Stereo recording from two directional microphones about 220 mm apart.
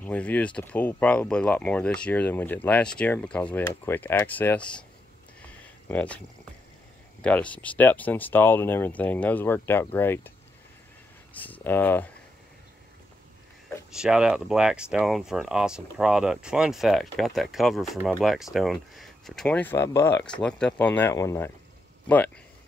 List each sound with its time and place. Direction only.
0.0 s speech: 5° left (ahead or behind)
5.9 s speech: 5° left (ahead or behind)
11.3 s speech: 5° left (ahead or behind)
13.9 s speech: 5° right (ahead or behind)